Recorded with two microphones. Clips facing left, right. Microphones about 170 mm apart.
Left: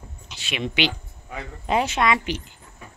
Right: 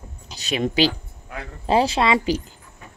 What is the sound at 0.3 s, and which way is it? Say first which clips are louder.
Speech: right 6 dB; 40° right (ahead or behind).